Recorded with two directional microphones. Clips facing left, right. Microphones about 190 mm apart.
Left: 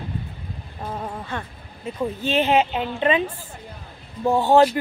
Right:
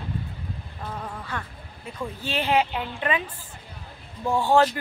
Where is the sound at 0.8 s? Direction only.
25° left (ahead or behind).